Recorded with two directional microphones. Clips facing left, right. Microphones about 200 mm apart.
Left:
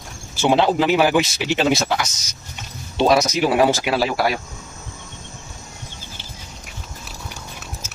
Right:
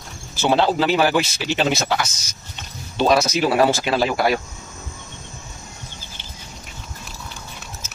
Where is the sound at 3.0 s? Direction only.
25° left (ahead or behind).